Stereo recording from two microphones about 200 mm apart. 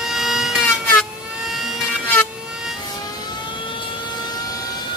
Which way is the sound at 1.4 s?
Centre (ahead or behind).